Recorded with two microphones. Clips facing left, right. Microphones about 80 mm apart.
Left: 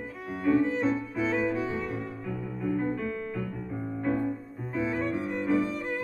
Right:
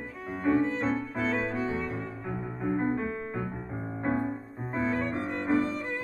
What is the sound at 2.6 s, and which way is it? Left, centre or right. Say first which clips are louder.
Music: right 1 dB; right.